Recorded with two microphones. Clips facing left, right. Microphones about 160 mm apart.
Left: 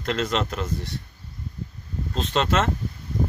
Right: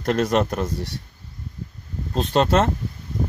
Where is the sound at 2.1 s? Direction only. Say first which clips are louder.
Right 5 dB; 40° right (ahead or behind).